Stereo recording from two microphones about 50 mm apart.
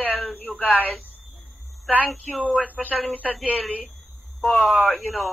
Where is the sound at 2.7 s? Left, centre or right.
Left.